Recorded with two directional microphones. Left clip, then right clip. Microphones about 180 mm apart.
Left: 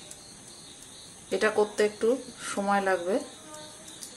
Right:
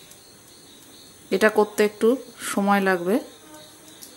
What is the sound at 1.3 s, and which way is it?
Speech, 50° right (ahead or behind).